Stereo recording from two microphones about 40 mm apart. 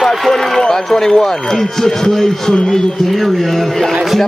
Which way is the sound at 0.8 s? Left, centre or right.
Centre.